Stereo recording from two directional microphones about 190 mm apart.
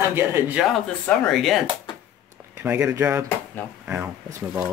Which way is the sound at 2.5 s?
10° right (ahead or behind).